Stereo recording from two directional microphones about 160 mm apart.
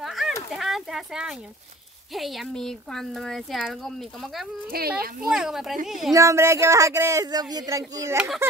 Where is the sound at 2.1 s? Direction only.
Centre (ahead or behind).